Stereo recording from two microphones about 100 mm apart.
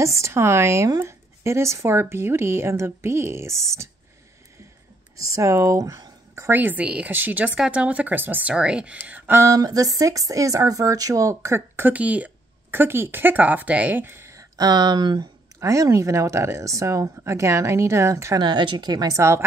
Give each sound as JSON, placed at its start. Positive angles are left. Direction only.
{"t": 0.0, "sound": "speech", "side_deg": -30}
{"t": 5.1, "sound": "speech", "side_deg": -35}
{"t": 6.5, "sound": "speech", "side_deg": -15}
{"t": 9.4, "sound": "speech", "side_deg": -35}
{"t": 14.6, "sound": "speech", "side_deg": -45}
{"t": 15.6, "sound": "speech", "side_deg": -30}